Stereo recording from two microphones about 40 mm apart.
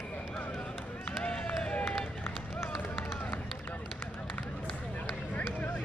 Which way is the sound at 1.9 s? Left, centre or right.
Left.